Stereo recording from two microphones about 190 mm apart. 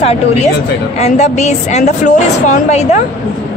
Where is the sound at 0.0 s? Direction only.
35° left (ahead or behind).